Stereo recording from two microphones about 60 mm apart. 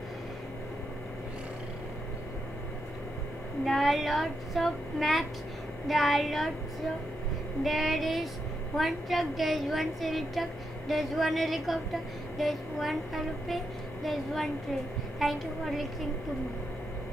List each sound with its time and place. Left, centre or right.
3.6 s a woman's voice: centre
7.6 s a woman's voice: centre